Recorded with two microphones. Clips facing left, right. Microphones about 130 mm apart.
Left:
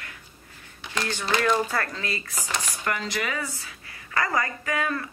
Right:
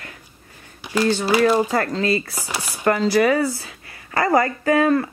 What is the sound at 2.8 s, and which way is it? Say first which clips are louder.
Speech: right 15 dB; 35° right (ahead or behind).